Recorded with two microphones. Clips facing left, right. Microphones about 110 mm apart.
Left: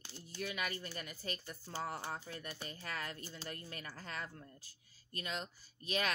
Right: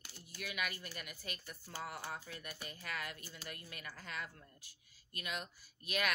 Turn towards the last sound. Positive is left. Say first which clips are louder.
# left 1 dB
turn(degrees=30)  # may be behind; listen again after turning